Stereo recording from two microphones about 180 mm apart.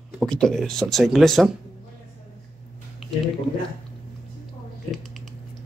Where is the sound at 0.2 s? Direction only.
Centre (ahead or behind).